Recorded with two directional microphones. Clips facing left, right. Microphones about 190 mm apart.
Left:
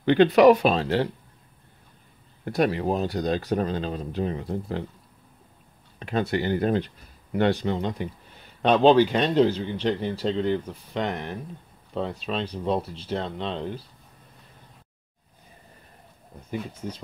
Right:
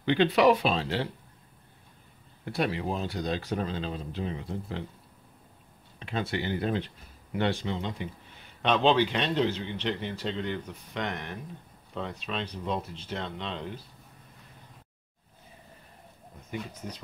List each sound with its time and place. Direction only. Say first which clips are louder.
0.0 s speech: left 6 dB; 50° left (ahead or behind)
2.4 s speech: left 6 dB; 45° left (ahead or behind)
5.9 s a man's voice: left 6 dB; 45° left (ahead or behind)